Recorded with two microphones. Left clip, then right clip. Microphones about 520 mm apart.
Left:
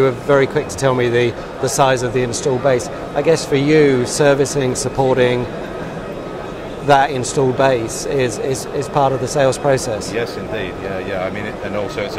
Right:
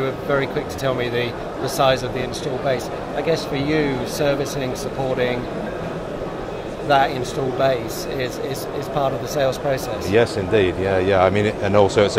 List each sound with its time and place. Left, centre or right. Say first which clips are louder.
0.0 s speech: left 7 dB; left
6.9 s speech: left 4 dB; left
10.1 s speech: right 5 dB; right